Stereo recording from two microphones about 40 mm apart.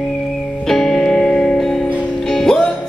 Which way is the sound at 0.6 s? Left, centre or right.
Centre.